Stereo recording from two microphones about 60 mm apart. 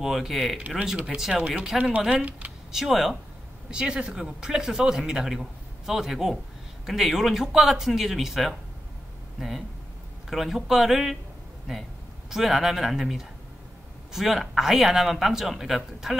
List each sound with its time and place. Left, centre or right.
0.0 s a man's voice: centre
0.6 s speech: right
1.0 s a man's voice: centre
2.7 s a man's voice: centre
10.3 s a man's voice: centre